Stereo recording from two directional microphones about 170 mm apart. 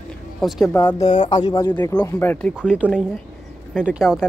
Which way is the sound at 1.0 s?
30° left (ahead or behind).